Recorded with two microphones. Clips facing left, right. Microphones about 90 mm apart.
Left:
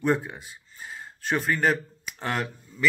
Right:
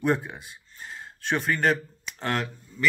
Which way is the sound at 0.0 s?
Centre (ahead or behind).